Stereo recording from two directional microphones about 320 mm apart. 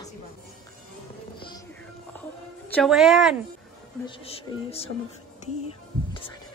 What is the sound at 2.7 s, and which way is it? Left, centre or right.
Speech, centre.